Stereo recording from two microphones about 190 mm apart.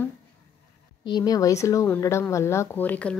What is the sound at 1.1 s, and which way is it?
A woman's voice, 20° left (ahead or behind).